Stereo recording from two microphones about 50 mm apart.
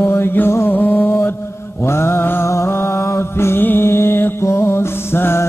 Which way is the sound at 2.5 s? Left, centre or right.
Left.